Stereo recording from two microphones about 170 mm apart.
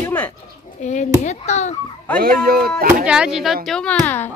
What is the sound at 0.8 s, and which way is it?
Speech, 45° left (ahead or behind).